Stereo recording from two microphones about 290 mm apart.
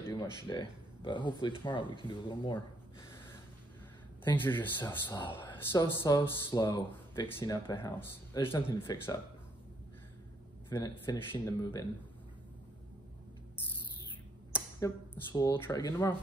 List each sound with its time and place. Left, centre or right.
0.0 s music: centre
0.5 s speech: centre
4.2 s speech: centre
10.7 s speech: centre
14.8 s speech: centre